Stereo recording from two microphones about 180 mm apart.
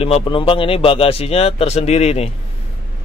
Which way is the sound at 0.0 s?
30° left (ahead or behind).